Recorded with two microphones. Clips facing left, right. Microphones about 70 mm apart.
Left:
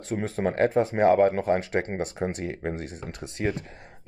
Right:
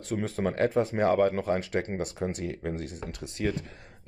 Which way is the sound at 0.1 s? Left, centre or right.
Left.